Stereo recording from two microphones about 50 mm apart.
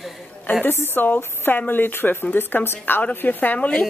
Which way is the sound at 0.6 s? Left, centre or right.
Left.